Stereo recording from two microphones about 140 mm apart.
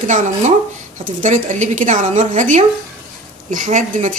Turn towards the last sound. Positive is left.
turn(degrees=-60)  # may be behind; listen again after turning